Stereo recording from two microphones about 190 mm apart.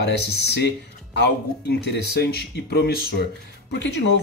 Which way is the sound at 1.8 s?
60° left (ahead or behind).